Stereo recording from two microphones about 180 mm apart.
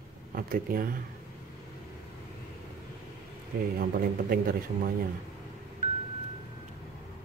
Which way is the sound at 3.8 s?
55° right (ahead or behind).